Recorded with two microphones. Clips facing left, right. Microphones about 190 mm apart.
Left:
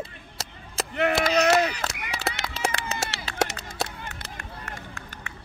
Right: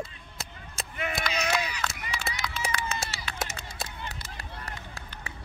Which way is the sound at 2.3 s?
70° left (ahead or behind).